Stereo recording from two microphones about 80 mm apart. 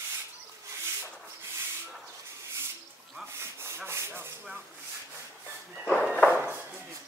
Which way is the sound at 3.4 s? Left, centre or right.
Right.